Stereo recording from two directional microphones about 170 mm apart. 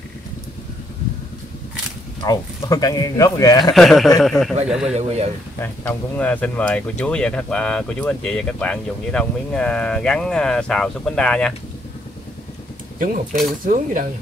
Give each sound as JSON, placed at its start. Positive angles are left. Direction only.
{"t": 2.2, "sound": "speech", "side_deg": 20}
{"t": 3.7, "sound": "speech", "side_deg": 0}
{"t": 4.8, "sound": "speech", "side_deg": -40}
{"t": 5.6, "sound": "speech", "side_deg": 10}
{"t": 13.0, "sound": "speech", "side_deg": -50}